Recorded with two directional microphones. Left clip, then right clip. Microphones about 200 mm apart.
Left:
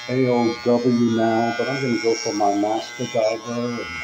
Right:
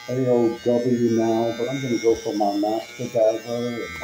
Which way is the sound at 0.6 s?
25° left (ahead or behind).